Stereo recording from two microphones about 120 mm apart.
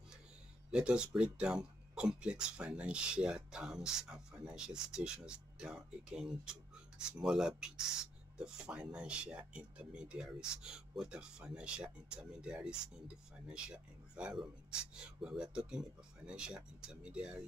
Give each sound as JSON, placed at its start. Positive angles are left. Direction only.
{"t": 0.7, "sound": "speech", "side_deg": -5}